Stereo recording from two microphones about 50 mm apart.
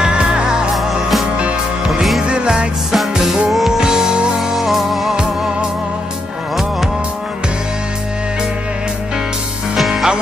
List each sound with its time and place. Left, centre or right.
0.0 s music: centre
1.9 s music: centre
2.2 s music: centre
2.9 s music: centre
5.1 s music: centre
9.8 s music: centre